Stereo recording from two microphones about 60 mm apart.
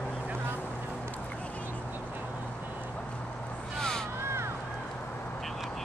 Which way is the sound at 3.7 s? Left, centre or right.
Centre.